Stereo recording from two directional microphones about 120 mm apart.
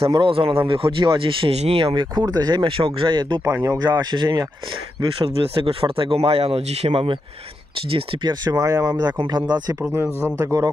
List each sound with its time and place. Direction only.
0.1 s speech: 45° right (ahead or behind)
3.4 s speech: 25° right (ahead or behind)
5.2 s speech: 50° right (ahead or behind)
9.8 s speech: 20° right (ahead or behind)
10.0 s speech: 15° left (ahead or behind)
10.4 s speech: 30° right (ahead or behind)